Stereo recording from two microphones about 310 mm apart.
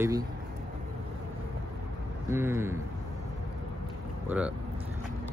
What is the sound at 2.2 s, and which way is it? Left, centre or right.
Speech, centre.